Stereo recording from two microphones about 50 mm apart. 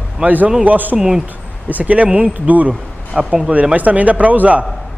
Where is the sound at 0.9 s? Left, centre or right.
Centre.